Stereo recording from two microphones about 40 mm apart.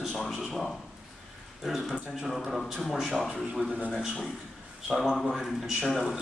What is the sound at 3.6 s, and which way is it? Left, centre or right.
Speech, right.